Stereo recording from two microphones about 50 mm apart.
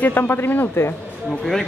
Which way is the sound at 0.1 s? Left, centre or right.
Left.